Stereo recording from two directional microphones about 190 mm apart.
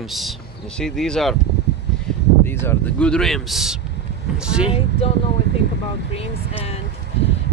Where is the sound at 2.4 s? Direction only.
10° left (ahead or behind); by 4.7 s 5° right (ahead or behind).